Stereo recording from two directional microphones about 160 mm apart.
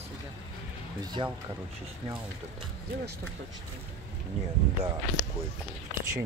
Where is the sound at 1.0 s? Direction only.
30° right (ahead or behind).